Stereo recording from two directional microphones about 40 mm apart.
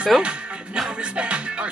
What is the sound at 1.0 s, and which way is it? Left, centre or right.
Music, right.